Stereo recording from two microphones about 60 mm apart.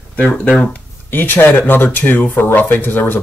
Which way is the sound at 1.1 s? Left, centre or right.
Left.